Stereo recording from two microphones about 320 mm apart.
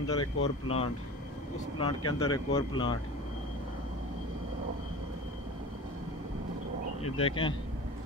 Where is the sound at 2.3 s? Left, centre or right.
Centre.